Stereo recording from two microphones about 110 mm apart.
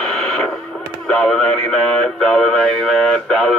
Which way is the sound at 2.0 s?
5° left (ahead or behind).